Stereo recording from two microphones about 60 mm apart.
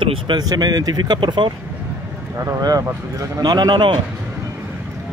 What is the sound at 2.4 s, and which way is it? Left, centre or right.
Speech, right.